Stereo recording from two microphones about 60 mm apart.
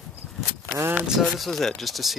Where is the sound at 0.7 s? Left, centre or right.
Right.